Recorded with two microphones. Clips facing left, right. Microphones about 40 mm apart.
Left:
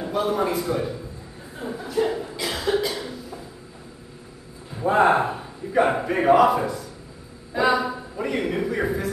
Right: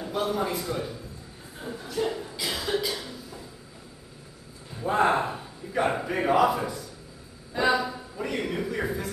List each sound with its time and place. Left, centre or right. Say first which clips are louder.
0.1 s a man's voice: left 5 dB; centre
1.6 s chuckle: left 5 dB; centre
4.7 s a man's voice: left 5 dB; centre